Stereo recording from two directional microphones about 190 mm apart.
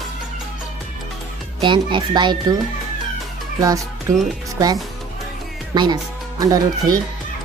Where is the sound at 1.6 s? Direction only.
25° right (ahead or behind).